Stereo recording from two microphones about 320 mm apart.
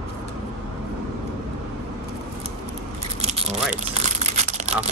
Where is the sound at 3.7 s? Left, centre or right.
Right.